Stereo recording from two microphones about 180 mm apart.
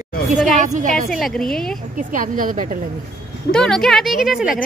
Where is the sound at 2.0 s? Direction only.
45° right (ahead or behind).